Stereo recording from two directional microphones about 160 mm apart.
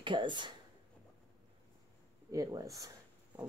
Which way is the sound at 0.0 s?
30° right (ahead or behind).